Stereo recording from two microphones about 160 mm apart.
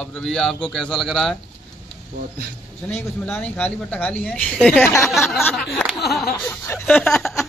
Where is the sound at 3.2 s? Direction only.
10° left (ahead or behind).